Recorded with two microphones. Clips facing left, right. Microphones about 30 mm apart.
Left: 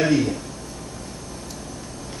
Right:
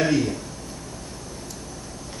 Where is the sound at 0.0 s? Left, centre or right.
Centre.